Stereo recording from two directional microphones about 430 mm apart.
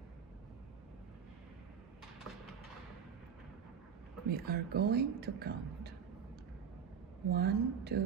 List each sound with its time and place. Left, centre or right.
4.3 s speech: right
7.2 s speech: right